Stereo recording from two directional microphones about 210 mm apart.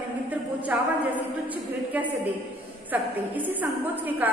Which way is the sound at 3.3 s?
10° right (ahead or behind).